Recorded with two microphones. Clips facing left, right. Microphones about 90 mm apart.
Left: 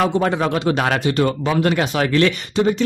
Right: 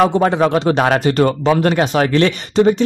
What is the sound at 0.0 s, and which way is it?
Speech, 35° right (ahead or behind).